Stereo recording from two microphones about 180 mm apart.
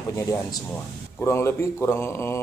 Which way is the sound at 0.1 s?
15° left (ahead or behind).